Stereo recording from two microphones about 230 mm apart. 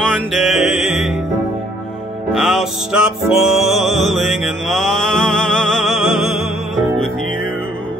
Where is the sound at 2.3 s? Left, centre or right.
Centre.